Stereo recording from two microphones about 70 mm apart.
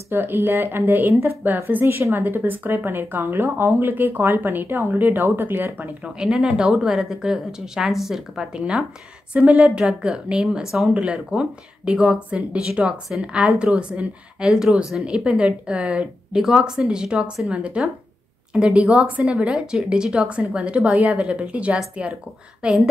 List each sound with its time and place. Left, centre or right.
0.1 s speech: right
6.0 s a woman's voice: centre